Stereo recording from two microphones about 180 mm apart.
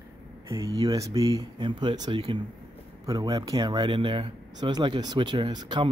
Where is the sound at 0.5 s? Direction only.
20° right (ahead or behind).